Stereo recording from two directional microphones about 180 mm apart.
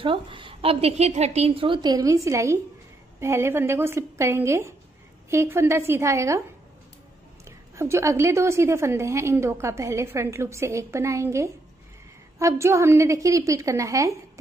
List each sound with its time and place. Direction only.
0.0 s a woman's voice: 30° right (ahead or behind)
7.4 s a woman's voice: 15° right (ahead or behind)